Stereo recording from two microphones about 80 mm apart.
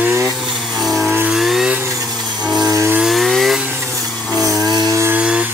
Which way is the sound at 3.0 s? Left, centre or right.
Centre.